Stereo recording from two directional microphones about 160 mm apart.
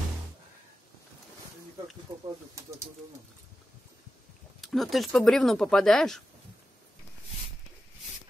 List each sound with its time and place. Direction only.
2.1 s speech: 30° right (ahead or behind)
4.6 s speech: centre (ahead or behind)